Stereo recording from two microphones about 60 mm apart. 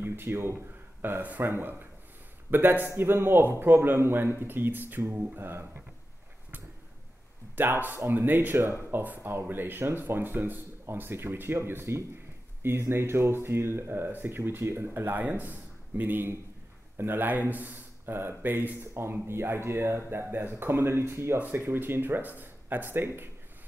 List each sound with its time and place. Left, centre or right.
0.0 s speech: right
7.5 s speech: right
15.0 s a man's voice: right
19.2 s speech: right
21.4 s speech: right